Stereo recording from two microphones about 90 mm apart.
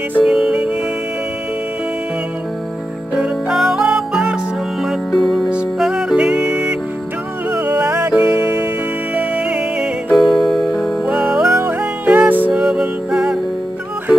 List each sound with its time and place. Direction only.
0.2 s music: 5° right (ahead or behind)
3.2 s music: 5° right (ahead or behind)
4.8 s music: 5° left (ahead or behind)
5.5 s music: 5° right (ahead or behind)
9.1 s music: 10° right (ahead or behind)
12.6 s music: 10° right (ahead or behind)